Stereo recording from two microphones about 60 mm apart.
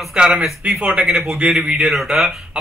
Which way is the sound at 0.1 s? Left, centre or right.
Centre.